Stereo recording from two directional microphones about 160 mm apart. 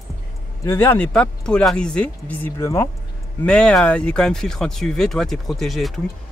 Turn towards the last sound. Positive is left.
turn(degrees=0)  # may be behind; listen again after turning